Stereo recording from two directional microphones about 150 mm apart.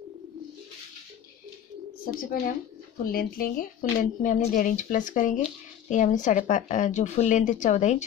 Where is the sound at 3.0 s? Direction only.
75° left (ahead or behind).